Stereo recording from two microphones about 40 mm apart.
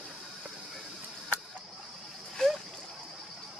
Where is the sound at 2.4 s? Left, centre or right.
Centre.